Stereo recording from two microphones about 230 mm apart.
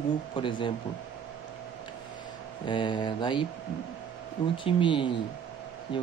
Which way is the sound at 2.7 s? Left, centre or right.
Left.